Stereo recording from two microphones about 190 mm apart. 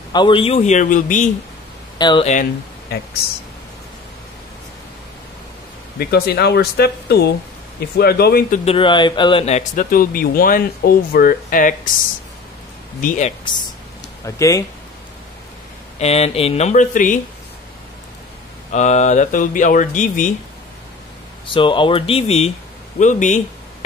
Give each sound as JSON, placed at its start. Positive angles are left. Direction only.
{"t": 0.1, "sound": "speech", "side_deg": 25}
{"t": 2.0, "sound": "speech", "side_deg": 25}
{"t": 5.9, "sound": "speech", "side_deg": 55}
{"t": 8.6, "sound": "speech", "side_deg": 25}
{"t": 13.0, "sound": "speech", "side_deg": 40}
{"t": 14.2, "sound": "speech", "side_deg": 15}
{"t": 16.0, "sound": "speech", "side_deg": 35}
{"t": 18.7, "sound": "speech", "side_deg": 40}
{"t": 21.5, "sound": "speech", "side_deg": 25}